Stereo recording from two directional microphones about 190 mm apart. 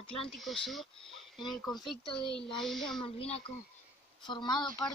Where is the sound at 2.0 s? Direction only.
25° left (ahead or behind).